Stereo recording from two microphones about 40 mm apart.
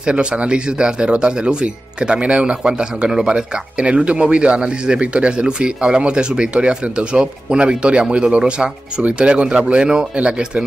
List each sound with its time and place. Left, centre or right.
0.0 s speech: right